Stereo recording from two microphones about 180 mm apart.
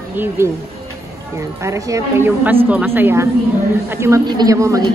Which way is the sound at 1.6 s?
15° right (ahead or behind).